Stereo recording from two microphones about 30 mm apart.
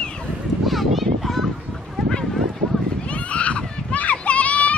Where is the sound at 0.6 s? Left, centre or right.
Centre.